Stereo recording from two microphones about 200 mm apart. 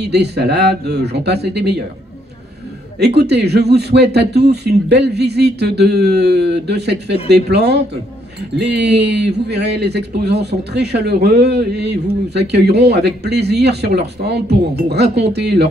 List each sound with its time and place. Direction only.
0.0 s speech: 55° right (ahead or behind)
3.2 s speech: 55° right (ahead or behind)